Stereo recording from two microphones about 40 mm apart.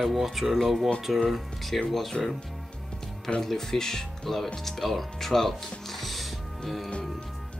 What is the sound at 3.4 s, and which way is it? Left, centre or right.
Speech, centre.